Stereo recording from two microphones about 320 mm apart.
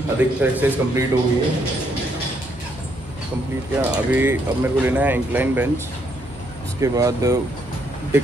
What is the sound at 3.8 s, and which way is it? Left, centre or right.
Speech, centre.